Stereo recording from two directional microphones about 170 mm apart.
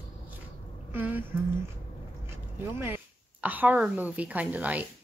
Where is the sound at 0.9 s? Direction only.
10° right (ahead or behind).